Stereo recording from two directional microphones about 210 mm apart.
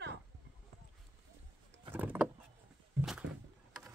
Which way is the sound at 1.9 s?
10° right (ahead or behind).